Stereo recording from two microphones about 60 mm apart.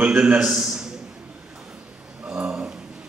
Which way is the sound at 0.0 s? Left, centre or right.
Right.